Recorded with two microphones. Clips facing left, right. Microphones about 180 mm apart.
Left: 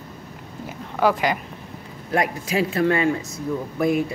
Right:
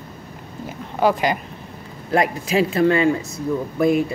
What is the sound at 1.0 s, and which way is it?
Speech, 20° right (ahead or behind).